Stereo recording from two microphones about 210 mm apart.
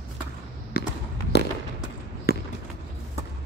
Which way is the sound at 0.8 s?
50° left (ahead or behind).